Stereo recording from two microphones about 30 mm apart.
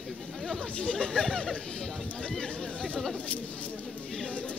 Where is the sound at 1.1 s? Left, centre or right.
Centre.